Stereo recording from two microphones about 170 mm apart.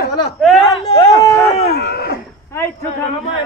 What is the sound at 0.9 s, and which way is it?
Speech, 20° left (ahead or behind).